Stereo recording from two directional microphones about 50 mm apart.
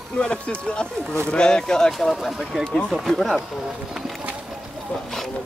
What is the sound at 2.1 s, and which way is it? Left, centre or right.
Speech, centre.